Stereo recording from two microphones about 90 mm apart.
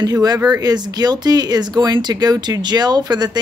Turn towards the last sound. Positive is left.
turn(degrees=-50)  # may be behind; listen again after turning